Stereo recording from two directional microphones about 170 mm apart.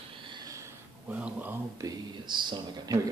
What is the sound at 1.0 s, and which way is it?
Speech, 10° right (ahead or behind).